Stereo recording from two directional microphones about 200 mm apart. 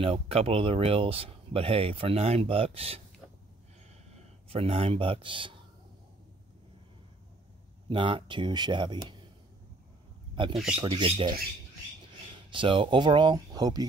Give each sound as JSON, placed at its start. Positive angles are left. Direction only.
{"t": 0.0, "sound": "speech", "side_deg": -30}
{"t": 4.5, "sound": "speech", "side_deg": -30}
{"t": 7.9, "sound": "speech", "side_deg": -25}
{"t": 10.3, "sound": "speech", "side_deg": -25}
{"t": 12.4, "sound": "speech", "side_deg": -25}